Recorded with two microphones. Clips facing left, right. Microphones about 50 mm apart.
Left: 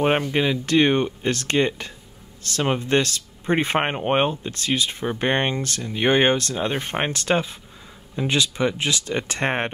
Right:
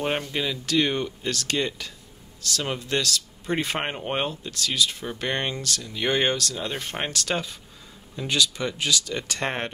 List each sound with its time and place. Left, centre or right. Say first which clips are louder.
0.0 s speech: left 7 dB; left